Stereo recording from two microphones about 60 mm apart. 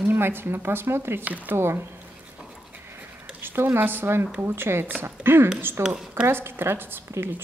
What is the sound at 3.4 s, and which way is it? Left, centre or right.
Speech, right.